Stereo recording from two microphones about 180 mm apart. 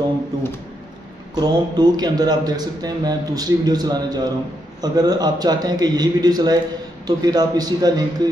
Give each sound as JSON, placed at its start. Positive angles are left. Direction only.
{"t": 1.3, "sound": "speech", "side_deg": -20}